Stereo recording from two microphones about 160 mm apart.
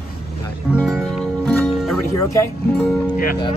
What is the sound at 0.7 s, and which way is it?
Music, centre (ahead or behind).